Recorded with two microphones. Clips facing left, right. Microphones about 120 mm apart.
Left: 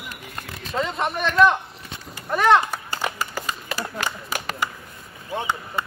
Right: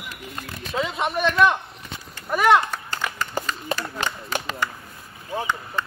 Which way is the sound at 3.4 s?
10° left (ahead or behind).